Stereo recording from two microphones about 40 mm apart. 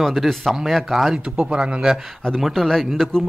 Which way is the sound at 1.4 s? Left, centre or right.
Right.